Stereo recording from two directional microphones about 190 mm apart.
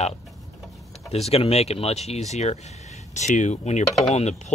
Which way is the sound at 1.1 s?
30° left (ahead or behind).